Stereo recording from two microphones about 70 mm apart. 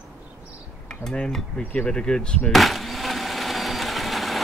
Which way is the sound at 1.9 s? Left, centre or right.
Centre.